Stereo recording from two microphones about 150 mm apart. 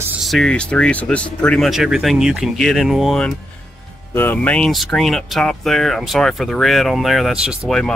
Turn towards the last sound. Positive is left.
turn(degrees=0)  # may be behind; listen again after turning